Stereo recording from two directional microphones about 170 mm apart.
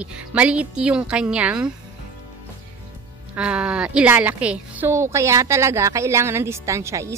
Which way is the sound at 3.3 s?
5° right (ahead or behind).